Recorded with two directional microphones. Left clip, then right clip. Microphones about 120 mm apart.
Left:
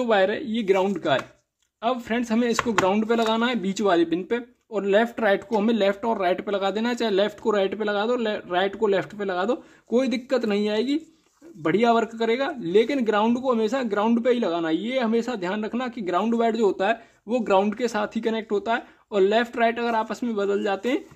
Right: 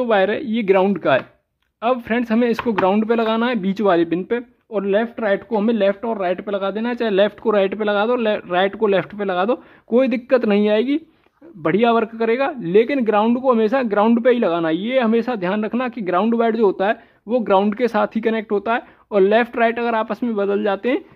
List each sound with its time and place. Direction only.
0.1 s speech: 30° right (ahead or behind)
4.9 s speech: 10° right (ahead or behind)
5.3 s speech: 20° right (ahead or behind)
17.7 s speech: 40° right (ahead or behind)